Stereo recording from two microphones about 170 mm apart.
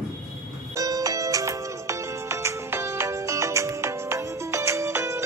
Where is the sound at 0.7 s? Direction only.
20° right (ahead or behind).